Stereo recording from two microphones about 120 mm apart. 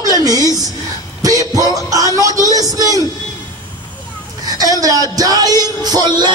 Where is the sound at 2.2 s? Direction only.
30° right (ahead or behind).